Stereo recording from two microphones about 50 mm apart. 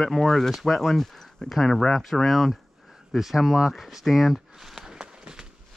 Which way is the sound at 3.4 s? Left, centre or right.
Centre.